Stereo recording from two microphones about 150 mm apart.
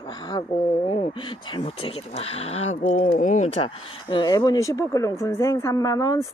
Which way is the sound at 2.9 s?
60° left (ahead or behind).